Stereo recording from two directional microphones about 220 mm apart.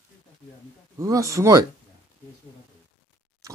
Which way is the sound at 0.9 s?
15° right (ahead or behind).